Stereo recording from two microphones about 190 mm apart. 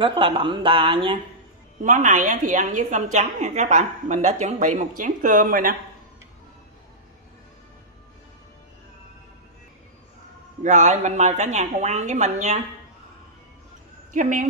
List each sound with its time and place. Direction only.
0.0 s speech: 25° right (ahead or behind)
1.8 s a woman's voice: 40° right (ahead or behind)
10.6 s a woman's voice: 40° right (ahead or behind)
14.1 s speech: 45° right (ahead or behind)